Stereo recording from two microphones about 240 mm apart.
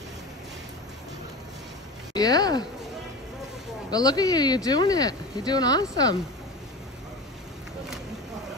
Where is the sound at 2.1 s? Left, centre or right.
Centre.